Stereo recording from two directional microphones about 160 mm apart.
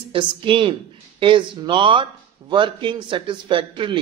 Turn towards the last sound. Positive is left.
turn(degrees=-30)  # may be behind; listen again after turning